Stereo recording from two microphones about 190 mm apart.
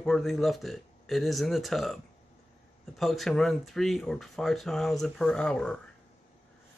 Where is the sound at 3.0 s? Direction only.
Centre (ahead or behind).